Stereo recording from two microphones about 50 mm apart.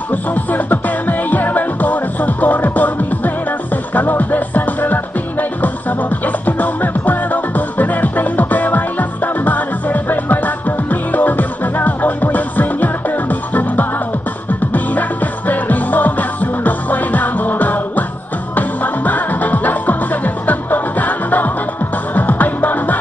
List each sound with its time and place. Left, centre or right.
0.1 s music: left
3.9 s music: left